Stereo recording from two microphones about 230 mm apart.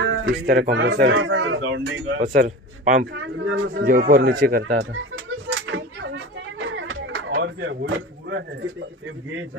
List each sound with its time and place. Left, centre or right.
0.0 s a sound: right
0.5 s a man's voice: right
0.8 s speech: right
2.1 s a man's voice: right
3.1 s a man's voice: right
5.5 s a sound: right